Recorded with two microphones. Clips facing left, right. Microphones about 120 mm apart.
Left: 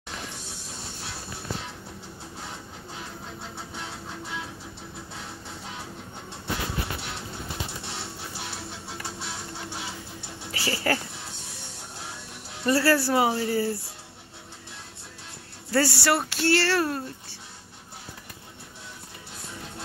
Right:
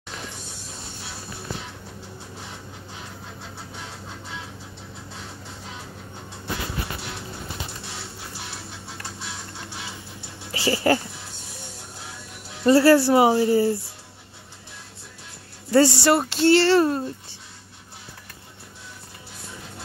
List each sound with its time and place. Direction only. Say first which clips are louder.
10.5 s speech: right 6 dB; 25° right (ahead or behind)
12.6 s speech: right 7 dB; 25° right (ahead or behind)
15.7 s speech: right 6 dB; 20° right (ahead or behind)